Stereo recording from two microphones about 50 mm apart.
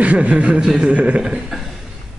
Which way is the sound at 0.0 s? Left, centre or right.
Right.